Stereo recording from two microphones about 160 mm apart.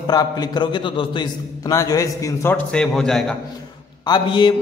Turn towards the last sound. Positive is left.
turn(degrees=25)  # may be behind; listen again after turning